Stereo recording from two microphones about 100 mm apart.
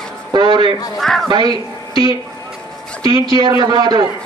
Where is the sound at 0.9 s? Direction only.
5° left (ahead or behind).